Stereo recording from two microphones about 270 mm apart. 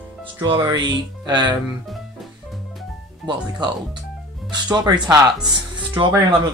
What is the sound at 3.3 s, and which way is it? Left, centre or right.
Speech, centre.